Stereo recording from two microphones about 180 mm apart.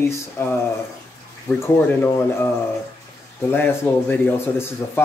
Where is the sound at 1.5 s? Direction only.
10° left (ahead or behind).